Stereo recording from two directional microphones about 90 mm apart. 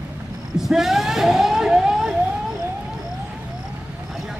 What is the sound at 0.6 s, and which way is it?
Vehicle, 5° right (ahead or behind).